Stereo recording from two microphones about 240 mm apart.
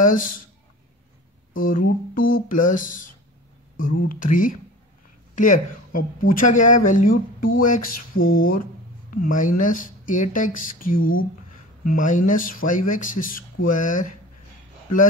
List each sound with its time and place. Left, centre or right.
0.0 s speech: left
1.6 s speech: left
11.0 s speech: left
11.8 s speech: left